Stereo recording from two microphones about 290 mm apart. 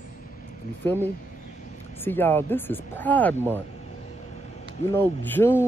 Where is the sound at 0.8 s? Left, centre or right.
Centre.